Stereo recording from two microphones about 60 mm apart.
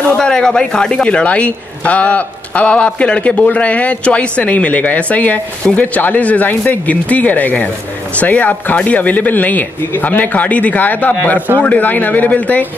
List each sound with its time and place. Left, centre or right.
0.0 s speech: centre